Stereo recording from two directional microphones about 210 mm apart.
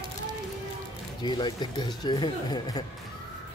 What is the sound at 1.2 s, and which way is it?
Speech, 20° left (ahead or behind).